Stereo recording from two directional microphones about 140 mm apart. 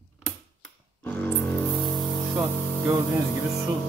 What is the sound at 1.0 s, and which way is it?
Music, 10° left (ahead or behind).